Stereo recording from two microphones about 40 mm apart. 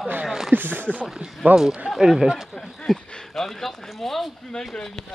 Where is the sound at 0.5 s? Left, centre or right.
Right.